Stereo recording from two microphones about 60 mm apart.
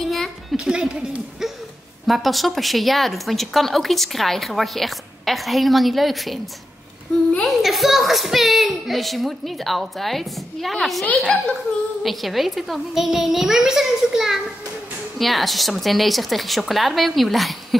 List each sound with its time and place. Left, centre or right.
0.0 s a sound: centre
0.7 s a sound: centre
2.0 s speech: centre
7.4 s speech: centre
11.2 s a woman's voice: centre
12.0 s speech: centre